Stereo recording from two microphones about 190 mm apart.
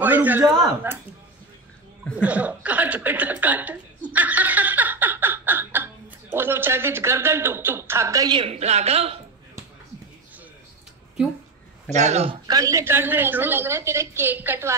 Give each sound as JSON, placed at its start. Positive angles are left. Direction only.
{"t": 0.0, "sound": "a sound", "side_deg": -10}
{"t": 0.5, "sound": "speech", "side_deg": -20}
{"t": 2.2, "sound": "chuckle", "side_deg": -5}
{"t": 6.3, "sound": "speech", "side_deg": -10}
{"t": 11.9, "sound": "speech", "side_deg": -35}
{"t": 12.4, "sound": "speech", "side_deg": -20}